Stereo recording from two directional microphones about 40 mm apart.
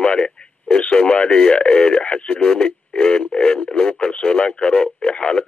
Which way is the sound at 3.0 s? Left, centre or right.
Left.